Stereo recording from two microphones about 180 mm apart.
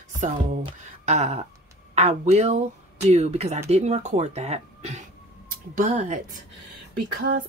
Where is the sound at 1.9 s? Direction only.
40° right (ahead or behind).